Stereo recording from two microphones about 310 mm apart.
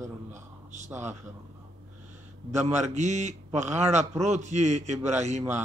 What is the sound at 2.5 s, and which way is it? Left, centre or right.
A man's voice, right.